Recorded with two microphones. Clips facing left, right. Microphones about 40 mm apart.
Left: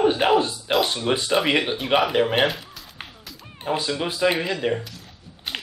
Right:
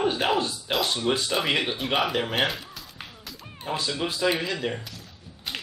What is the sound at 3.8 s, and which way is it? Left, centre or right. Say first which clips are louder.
Speech: left 2 dB; left.